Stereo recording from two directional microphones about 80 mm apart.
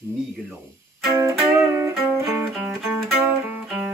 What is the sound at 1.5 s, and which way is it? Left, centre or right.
Music, right.